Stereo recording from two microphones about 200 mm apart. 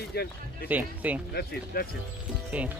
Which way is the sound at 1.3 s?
50° left (ahead or behind).